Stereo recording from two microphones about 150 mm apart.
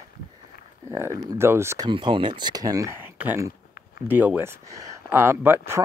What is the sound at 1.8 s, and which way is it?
Speech, 35° right (ahead or behind).